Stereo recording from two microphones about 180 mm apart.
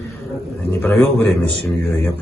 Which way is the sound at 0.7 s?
10° left (ahead or behind).